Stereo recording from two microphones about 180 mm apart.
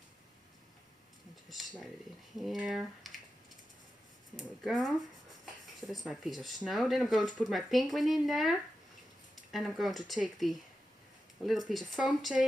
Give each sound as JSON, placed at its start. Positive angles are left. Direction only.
{"t": 1.5, "sound": "speech", "side_deg": 0}
{"t": 4.4, "sound": "speech", "side_deg": 0}